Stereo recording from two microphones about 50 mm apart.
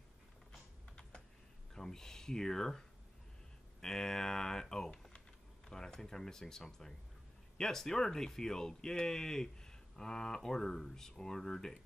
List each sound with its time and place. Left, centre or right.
0.5 s typing: centre
1.7 s speech: centre
3.8 s a sound: centre
5.7 s speech: centre